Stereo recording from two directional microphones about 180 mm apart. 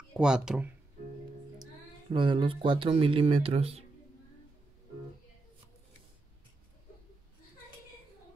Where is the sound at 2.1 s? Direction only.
30° right (ahead or behind).